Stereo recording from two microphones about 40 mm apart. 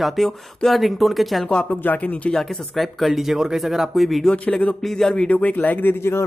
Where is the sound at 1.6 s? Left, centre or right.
Left.